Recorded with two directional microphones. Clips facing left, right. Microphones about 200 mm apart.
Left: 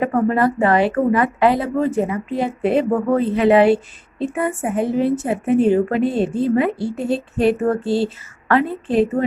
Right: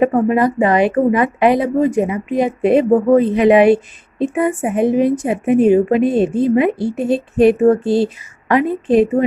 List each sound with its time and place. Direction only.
0.0 s speech: 20° right (ahead or behind)